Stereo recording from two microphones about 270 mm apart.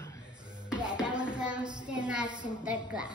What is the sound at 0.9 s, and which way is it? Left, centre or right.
Music, centre.